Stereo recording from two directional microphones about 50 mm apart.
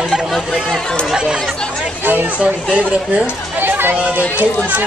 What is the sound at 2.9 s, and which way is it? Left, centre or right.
Speech, centre.